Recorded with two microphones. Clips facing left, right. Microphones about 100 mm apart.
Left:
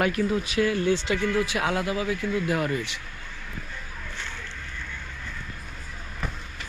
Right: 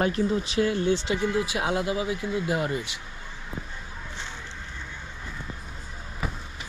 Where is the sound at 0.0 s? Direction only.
25° right (ahead or behind).